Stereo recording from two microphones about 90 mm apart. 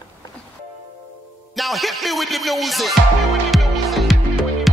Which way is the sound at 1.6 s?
Centre (ahead or behind).